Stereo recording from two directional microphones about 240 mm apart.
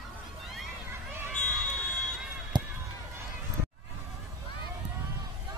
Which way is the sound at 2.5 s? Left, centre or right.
Centre.